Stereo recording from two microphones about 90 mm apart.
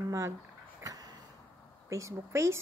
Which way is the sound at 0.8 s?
45° right (ahead or behind).